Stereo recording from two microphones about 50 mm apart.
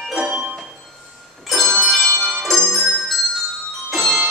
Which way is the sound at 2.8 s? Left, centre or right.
Centre.